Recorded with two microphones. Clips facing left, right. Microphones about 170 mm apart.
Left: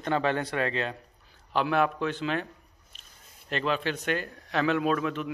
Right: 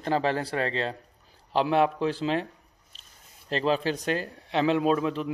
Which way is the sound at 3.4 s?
35° right (ahead or behind).